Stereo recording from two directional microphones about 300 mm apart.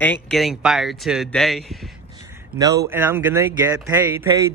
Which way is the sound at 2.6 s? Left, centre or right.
Centre.